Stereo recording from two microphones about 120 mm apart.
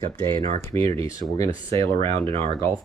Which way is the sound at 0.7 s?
25° left (ahead or behind).